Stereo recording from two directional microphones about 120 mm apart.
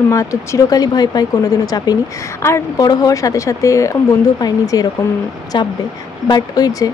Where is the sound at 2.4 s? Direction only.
25° left (ahead or behind).